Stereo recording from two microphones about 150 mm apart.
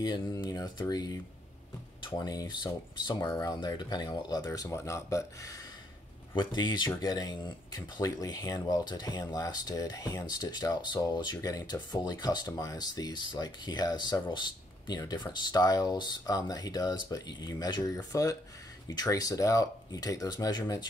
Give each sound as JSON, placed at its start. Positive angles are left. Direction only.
{"t": 0.0, "sound": "speech", "side_deg": 30}